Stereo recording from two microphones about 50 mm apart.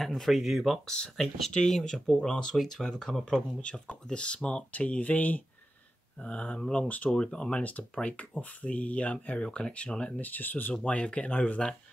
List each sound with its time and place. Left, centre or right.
0.0 s speech: centre
0.8 s speech: centre
3.6 s speech: left
6.2 s speech: left
7.6 s speech: left
10.2 s speech: left
10.9 s speech: left